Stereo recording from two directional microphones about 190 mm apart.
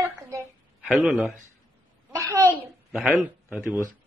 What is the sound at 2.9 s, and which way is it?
Speech, 5° right (ahead or behind).